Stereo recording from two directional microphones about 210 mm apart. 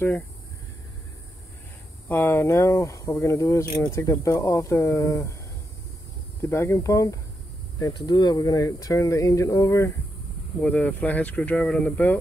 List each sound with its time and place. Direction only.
2.0 s speech: 10° left (ahead or behind)
6.4 s speech: 10° left (ahead or behind)